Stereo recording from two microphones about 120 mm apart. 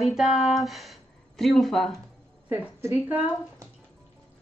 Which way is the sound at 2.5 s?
15° right (ahead or behind).